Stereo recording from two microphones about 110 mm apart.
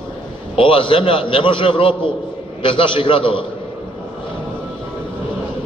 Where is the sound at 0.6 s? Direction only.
50° left (ahead or behind).